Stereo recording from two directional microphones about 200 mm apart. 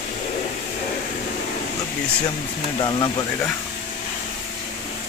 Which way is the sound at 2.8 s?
20° left (ahead or behind).